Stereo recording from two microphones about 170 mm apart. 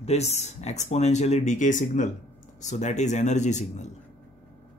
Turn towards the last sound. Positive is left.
turn(degrees=45)  # may be behind; listen again after turning